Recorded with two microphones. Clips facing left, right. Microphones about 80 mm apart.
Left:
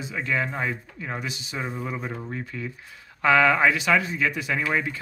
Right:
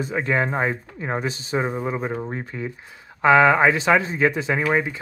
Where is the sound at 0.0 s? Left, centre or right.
Right.